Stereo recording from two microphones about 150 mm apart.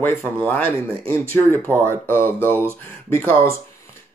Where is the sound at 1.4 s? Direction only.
15° left (ahead or behind).